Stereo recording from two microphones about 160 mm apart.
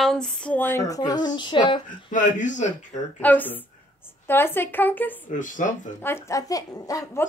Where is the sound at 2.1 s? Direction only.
50° left (ahead or behind).